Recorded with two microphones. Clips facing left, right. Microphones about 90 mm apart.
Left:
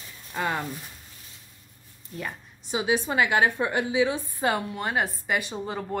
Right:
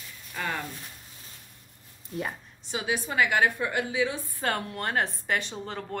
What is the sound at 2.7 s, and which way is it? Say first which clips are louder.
A woman's voice: left 5 dB; 20° left (ahead or behind).